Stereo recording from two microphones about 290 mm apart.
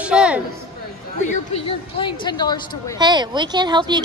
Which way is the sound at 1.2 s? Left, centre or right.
Left.